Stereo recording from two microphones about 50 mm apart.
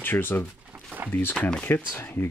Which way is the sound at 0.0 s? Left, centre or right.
Left.